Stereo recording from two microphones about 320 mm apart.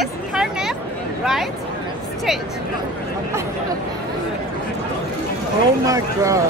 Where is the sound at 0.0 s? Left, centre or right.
Centre.